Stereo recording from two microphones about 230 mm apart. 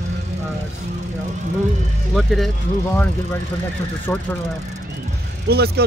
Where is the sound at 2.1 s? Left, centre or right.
Centre.